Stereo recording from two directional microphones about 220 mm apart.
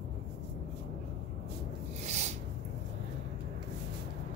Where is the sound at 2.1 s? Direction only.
30° right (ahead or behind).